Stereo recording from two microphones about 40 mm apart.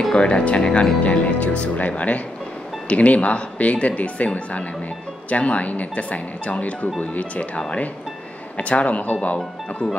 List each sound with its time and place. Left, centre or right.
0.1 s speech: left